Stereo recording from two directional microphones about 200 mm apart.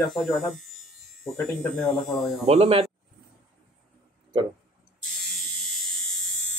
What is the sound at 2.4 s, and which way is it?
Speech, 30° right (ahead or behind).